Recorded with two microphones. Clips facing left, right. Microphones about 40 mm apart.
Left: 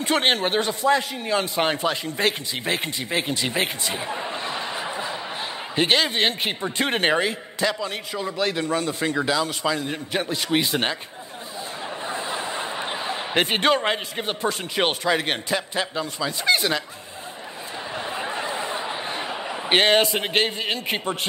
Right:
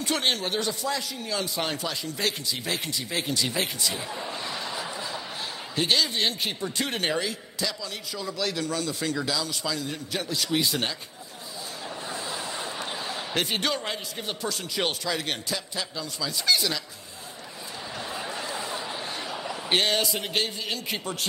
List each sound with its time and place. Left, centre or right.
0.0 s a man's voice: left
12.1 s speech: left
17.9 s a sound: left